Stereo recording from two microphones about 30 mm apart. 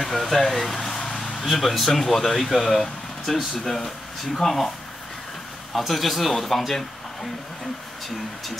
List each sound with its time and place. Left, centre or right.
0.0 s speech: centre
5.7 s speech: centre